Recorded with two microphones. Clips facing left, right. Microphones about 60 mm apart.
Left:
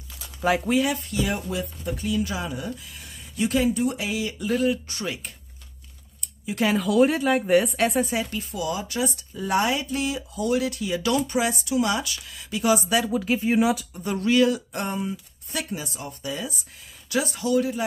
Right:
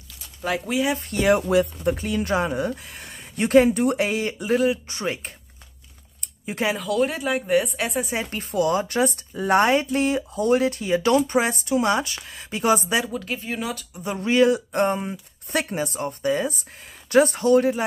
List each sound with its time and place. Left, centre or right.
0.9 s speech: right
6.7 s speech: centre
8.1 s speech: right
13.1 s speech: centre
14.0 s speech: right